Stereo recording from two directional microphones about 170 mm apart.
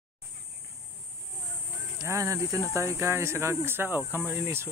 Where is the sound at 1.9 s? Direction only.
20° right (ahead or behind).